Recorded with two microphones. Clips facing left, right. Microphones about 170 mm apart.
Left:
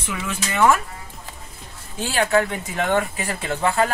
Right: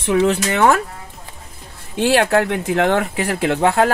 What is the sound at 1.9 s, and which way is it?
Speech, 75° right (ahead or behind).